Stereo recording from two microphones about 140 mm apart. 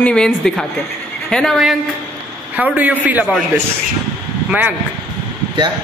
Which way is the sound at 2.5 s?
10° right (ahead or behind).